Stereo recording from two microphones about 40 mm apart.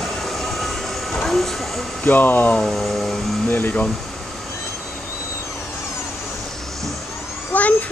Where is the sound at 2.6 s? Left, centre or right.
Centre.